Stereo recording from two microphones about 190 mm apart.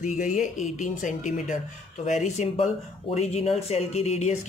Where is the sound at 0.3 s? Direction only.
40° left (ahead or behind).